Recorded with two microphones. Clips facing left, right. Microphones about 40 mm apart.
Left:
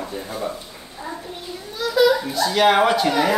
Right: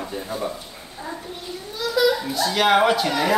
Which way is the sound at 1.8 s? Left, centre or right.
Centre.